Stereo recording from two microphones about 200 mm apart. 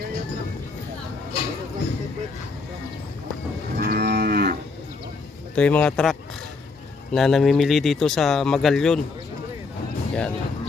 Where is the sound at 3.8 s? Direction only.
55° right (ahead or behind).